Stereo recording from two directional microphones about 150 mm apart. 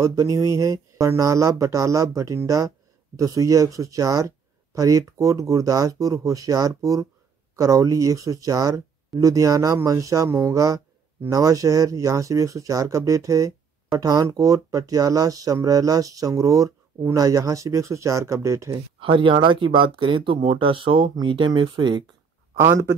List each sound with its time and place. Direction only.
0.0 s speech: 20° right (ahead or behind)
18.9 s speech: 35° right (ahead or behind)